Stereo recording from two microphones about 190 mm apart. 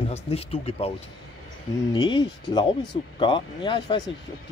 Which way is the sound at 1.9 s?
25° left (ahead or behind).